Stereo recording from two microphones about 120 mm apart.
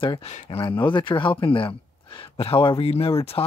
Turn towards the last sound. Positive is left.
turn(degrees=50)  # may be behind; listen again after turning